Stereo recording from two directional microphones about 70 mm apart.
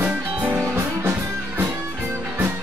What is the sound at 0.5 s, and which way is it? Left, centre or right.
Music, right.